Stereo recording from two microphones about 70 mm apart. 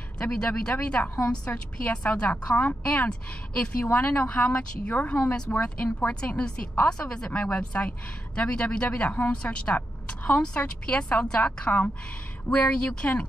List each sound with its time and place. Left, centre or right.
0.2 s a woman's voice: centre